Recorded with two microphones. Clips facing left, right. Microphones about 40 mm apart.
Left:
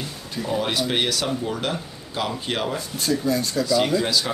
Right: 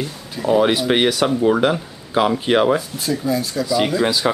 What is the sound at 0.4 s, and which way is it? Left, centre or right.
Speech, centre.